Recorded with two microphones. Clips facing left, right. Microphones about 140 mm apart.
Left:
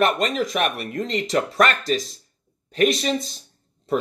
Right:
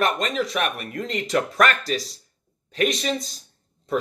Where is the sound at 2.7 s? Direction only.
40° left (ahead or behind).